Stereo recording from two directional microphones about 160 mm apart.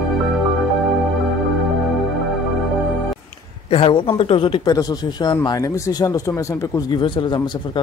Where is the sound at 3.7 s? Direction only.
35° left (ahead or behind).